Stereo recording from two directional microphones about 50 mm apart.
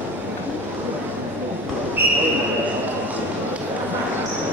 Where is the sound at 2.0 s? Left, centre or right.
Right.